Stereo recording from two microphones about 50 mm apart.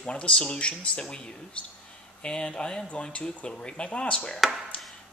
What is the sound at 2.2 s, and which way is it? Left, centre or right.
Speech, centre.